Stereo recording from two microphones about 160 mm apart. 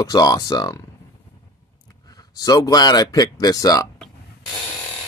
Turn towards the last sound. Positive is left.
turn(degrees=20)  # may be behind; listen again after turning